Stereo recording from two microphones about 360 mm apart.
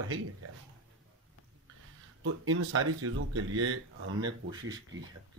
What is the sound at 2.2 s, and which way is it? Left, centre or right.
Speech, right.